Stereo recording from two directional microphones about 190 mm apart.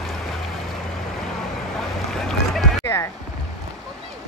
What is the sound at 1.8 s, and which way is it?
Boat, centre (ahead or behind).